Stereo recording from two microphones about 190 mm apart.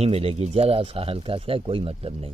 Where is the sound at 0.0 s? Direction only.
30° right (ahead or behind).